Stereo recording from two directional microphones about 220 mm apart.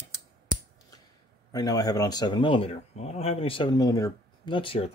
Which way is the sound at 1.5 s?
15° left (ahead or behind).